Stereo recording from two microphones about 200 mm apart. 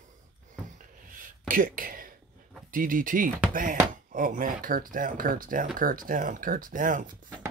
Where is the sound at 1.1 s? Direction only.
45° right (ahead or behind).